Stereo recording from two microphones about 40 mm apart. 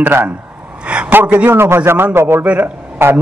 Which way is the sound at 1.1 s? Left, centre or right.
Right.